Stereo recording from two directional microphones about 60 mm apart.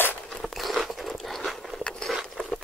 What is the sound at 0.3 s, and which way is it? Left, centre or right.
Biting, centre.